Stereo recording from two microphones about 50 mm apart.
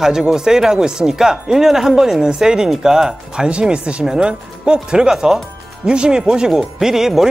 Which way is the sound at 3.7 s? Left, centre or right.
Right.